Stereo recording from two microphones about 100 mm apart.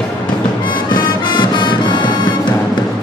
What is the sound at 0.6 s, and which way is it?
Music, 50° left (ahead or behind).